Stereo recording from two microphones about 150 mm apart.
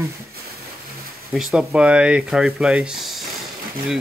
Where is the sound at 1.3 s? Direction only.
5° right (ahead or behind).